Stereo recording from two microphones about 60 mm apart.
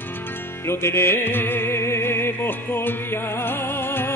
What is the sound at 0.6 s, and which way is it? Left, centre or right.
Music, left.